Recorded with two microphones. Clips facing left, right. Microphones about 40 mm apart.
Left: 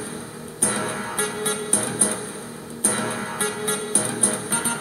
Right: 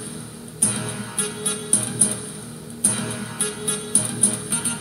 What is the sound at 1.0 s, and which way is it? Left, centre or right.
Music, left.